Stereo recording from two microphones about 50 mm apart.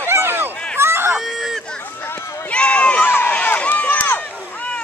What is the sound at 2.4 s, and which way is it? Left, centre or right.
Run, left.